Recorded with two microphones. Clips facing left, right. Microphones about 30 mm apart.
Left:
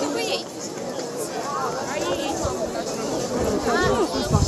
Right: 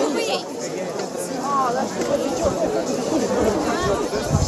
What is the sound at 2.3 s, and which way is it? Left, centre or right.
Chatter, right.